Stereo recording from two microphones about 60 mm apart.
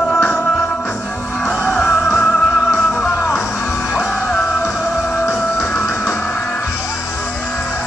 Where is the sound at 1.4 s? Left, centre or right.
Left.